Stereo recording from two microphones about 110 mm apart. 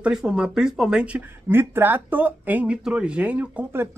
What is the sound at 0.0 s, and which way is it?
A man's voice, 5° right (ahead or behind).